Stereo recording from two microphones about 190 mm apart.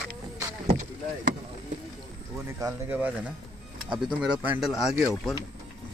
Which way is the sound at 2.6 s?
10° right (ahead or behind).